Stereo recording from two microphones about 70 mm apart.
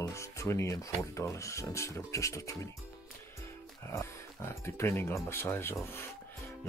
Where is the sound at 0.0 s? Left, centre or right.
Left.